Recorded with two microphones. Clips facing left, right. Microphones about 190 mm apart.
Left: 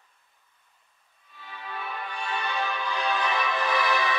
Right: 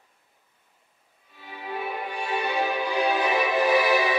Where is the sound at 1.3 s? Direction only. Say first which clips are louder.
Right 5 dB; 10° right (ahead or behind).